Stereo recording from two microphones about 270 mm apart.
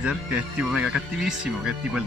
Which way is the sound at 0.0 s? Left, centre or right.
Centre.